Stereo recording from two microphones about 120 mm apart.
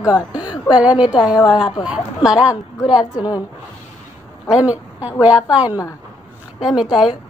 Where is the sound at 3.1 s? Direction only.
35° left (ahead or behind).